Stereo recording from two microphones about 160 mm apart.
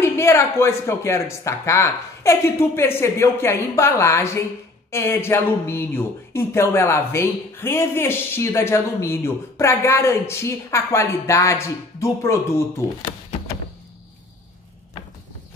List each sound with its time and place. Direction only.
0.0 s speech: 15° left (ahead or behind)